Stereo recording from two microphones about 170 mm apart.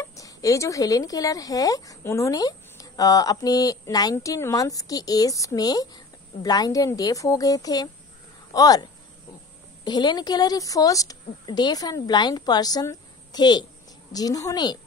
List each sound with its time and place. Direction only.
0.0 s speech: 20° left (ahead or behind)
9.8 s speech: 25° left (ahead or behind)